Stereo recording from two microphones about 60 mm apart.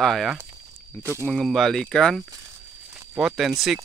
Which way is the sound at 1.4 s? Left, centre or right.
Centre.